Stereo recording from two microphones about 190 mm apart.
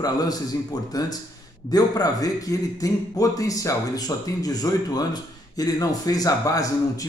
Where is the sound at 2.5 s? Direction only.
15° left (ahead or behind).